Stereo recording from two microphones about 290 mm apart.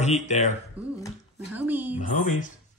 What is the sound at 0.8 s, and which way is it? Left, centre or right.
Speech, centre.